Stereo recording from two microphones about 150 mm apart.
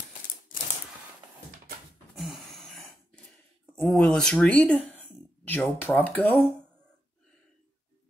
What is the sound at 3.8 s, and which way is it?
Speech, 10° left (ahead or behind).